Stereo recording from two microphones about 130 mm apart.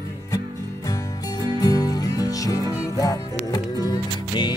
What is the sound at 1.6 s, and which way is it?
Music, 30° left (ahead or behind).